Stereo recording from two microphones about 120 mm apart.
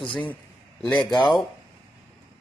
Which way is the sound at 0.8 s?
5° left (ahead or behind).